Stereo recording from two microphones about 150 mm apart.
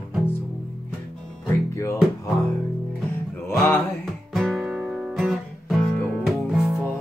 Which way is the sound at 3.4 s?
15° left (ahead or behind).